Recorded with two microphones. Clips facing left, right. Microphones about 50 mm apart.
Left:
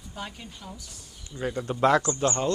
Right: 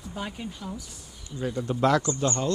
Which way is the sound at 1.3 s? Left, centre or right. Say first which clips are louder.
Even; left.